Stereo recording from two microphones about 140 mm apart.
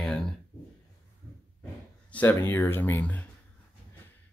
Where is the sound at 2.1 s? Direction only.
15° left (ahead or behind).